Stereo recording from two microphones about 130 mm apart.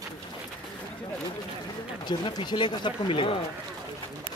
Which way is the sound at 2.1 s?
35° left (ahead or behind).